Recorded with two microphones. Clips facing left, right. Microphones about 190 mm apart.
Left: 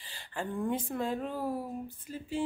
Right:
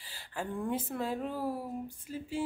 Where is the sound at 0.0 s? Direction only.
5° right (ahead or behind).